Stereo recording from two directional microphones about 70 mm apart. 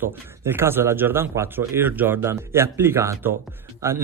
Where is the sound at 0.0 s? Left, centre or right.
Right.